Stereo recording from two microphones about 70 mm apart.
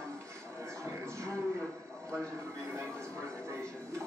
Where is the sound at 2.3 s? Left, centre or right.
Right.